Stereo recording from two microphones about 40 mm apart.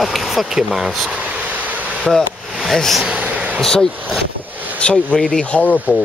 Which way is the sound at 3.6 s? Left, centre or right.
Centre.